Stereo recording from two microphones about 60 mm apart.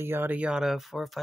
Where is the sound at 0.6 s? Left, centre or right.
Centre.